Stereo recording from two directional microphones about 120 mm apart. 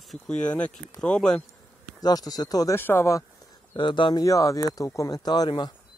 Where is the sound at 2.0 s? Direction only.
30° left (ahead or behind).